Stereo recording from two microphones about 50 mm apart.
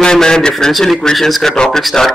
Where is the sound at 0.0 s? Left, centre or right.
Centre.